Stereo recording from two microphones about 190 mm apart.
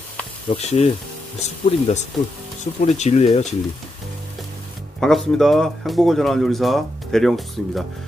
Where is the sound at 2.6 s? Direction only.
35° left (ahead or behind).